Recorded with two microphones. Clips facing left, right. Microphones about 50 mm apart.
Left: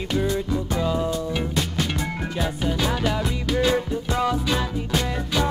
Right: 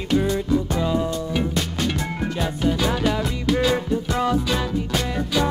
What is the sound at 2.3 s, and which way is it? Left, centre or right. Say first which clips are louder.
Music: right 2 dB; centre.